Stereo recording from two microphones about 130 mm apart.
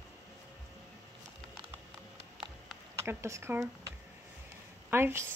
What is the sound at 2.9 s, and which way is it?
Speech, 20° right (ahead or behind).